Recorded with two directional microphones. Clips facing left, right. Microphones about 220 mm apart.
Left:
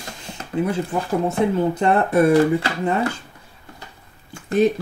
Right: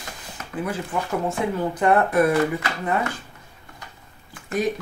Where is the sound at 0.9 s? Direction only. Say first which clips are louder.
Left 3 dB; 35° left (ahead or behind).